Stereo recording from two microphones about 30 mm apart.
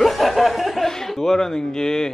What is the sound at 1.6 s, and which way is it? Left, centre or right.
Speech, left.